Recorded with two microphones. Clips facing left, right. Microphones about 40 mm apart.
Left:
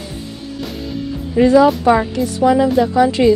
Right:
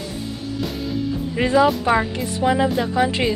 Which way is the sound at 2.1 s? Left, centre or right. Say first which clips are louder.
Left 6 dB; right.